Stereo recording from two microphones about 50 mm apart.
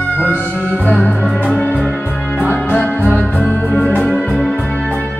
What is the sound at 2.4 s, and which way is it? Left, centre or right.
Music, left.